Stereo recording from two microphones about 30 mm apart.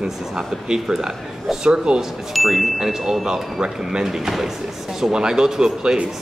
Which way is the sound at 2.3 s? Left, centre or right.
Centre.